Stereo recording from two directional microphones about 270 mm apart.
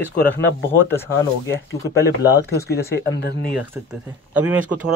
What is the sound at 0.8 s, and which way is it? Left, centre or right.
Speech, centre.